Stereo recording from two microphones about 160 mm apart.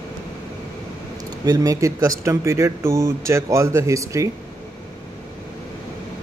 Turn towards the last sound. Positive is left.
turn(degrees=-20)  # may be behind; listen again after turning